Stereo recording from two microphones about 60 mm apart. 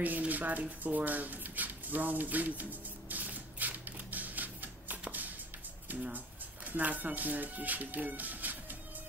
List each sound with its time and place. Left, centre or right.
0.0 s speech: right
3.1 s a sound: right
6.1 s speech: right